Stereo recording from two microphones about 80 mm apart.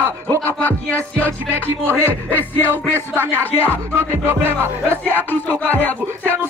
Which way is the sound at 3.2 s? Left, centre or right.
Left.